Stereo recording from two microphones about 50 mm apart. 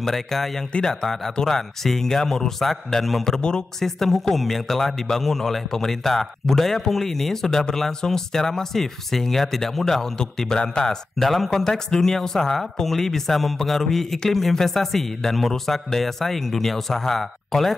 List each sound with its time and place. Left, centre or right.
0.0 s a man's voice: centre
3.3 s a man's voice: centre
4.0 s a man's voice: centre
11.1 s speech: centre